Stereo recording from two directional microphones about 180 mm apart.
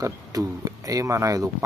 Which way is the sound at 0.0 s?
20° right (ahead or behind).